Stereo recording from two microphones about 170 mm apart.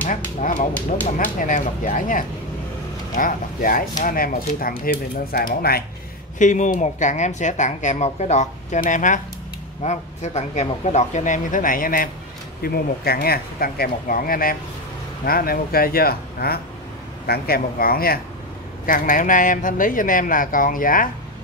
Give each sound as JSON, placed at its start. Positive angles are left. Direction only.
{"t": 0.0, "sound": "speech", "side_deg": 50}
{"t": 6.3, "sound": "speech", "side_deg": 45}